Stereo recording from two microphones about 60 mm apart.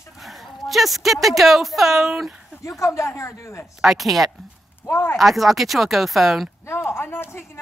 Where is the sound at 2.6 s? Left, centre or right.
Left.